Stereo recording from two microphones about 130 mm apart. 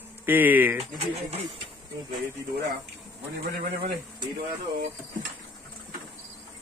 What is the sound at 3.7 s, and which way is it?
Speech, 40° right (ahead or behind).